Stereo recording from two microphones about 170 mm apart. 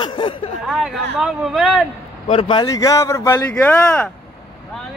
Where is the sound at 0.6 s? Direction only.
Centre (ahead or behind).